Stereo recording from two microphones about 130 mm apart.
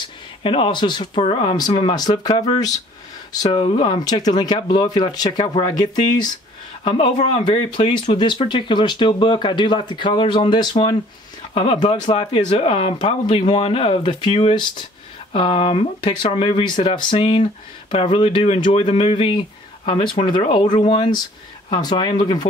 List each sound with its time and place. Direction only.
0.4 s speech: 45° left (ahead or behind)
3.5 s speech: 45° left (ahead or behind)
6.8 s speech: 50° left (ahead or behind)